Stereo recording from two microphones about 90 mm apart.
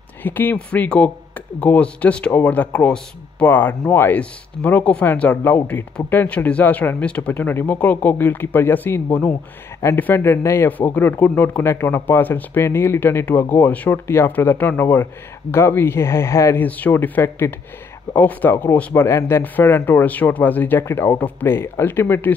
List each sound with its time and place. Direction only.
0.2 s speech: 20° left (ahead or behind)
10.7 s speech: 20° left (ahead or behind)
16.5 s speech: 20° left (ahead or behind)
19.0 s speech: 30° left (ahead or behind)